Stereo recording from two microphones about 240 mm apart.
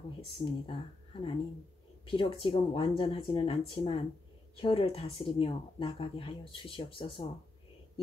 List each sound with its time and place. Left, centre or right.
0.2 s speech: left